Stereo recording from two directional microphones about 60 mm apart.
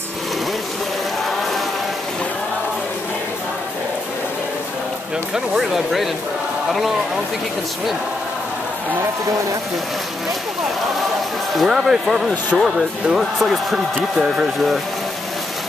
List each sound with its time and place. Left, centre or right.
11.5 s speech: centre
14.2 s speech: centre